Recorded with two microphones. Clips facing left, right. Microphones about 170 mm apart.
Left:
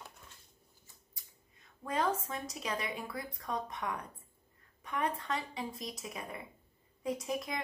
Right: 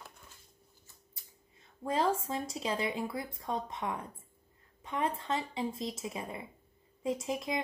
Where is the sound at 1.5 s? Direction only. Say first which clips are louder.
Right 3 dB; 30° right (ahead or behind).